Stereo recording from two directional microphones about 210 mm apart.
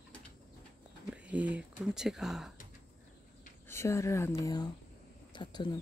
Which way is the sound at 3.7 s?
15° left (ahead or behind).